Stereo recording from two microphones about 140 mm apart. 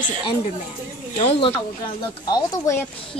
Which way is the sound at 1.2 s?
45° left (ahead or behind).